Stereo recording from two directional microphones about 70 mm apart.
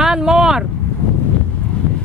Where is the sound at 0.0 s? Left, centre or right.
Centre.